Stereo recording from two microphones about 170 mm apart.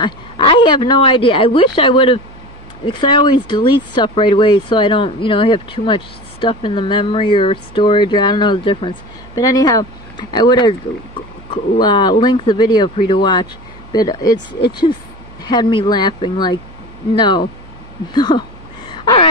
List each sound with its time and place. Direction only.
0.0 s speech: 25° left (ahead or behind)
15.4 s speech: 25° left (ahead or behind)
18.9 s a sound: 25° left (ahead or behind)